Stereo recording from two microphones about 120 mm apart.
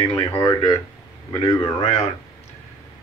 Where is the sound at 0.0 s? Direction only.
30° left (ahead or behind).